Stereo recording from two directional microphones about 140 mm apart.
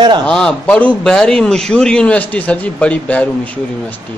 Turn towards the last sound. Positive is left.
turn(degrees=10)  # may be behind; listen again after turning